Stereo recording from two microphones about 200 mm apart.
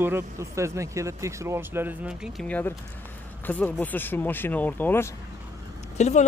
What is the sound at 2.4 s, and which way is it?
Speech, 5° left (ahead or behind).